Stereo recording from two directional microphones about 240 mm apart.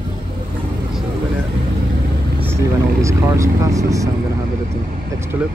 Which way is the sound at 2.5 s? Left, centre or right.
Centre.